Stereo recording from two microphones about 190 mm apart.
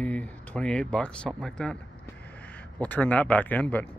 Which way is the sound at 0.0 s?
5° left (ahead or behind).